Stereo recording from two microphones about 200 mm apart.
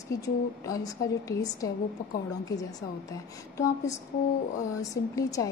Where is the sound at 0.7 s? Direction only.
15° left (ahead or behind).